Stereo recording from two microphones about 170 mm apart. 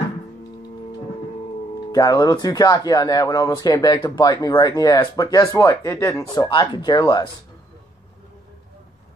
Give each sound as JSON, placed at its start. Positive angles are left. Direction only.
{"t": 1.9, "sound": "speech", "side_deg": 20}